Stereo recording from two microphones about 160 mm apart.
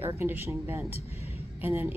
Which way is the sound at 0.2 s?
15° right (ahead or behind).